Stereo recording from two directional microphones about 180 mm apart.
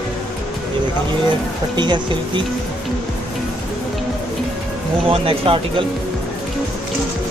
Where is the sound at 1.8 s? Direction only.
25° right (ahead or behind).